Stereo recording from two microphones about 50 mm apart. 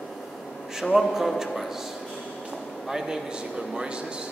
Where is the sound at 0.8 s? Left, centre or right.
Centre.